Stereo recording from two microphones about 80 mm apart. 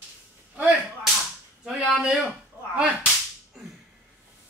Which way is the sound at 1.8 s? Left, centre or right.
Centre.